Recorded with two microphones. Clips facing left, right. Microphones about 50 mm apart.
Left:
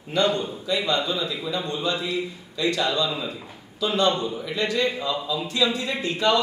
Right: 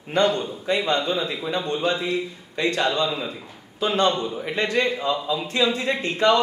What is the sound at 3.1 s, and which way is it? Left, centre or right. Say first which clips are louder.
Speech: right 1 dB; centre.